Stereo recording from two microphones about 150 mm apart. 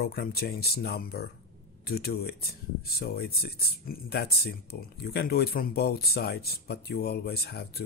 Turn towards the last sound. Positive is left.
turn(degrees=90)